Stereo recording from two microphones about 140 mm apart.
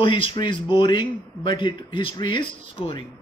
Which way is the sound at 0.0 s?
40° left (ahead or behind).